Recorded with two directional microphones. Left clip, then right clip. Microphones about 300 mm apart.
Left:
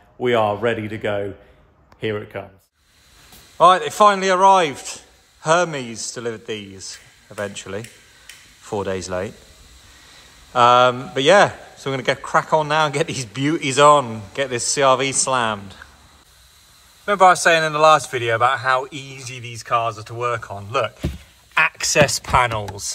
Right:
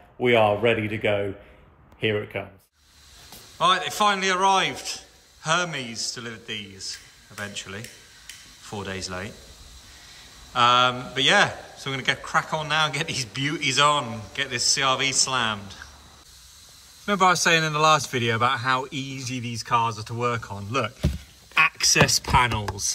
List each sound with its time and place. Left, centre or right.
0.2 s a man's voice: centre
0.7 s speech: left
2.0 s speech: centre
3.5 s speech: centre
17.0 s speech: centre
21.5 s speech: centre